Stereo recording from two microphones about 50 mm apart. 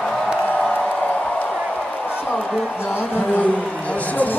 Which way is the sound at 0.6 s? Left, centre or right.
Left.